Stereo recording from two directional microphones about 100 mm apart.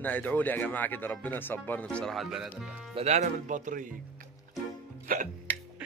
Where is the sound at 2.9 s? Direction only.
90° right.